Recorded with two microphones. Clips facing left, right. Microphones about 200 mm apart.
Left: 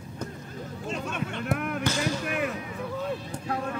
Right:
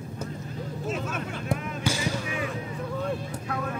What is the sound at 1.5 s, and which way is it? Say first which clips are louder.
Basketball bounce: left 1 dB; 60° left (ahead or behind).